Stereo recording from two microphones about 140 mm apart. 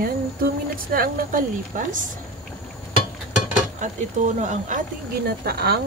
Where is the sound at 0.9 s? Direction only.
85° right; by 2.0 s 70° right (ahead or behind).